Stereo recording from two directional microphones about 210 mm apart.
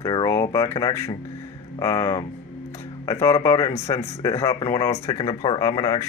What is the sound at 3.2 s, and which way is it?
Speech, 15° left (ahead or behind).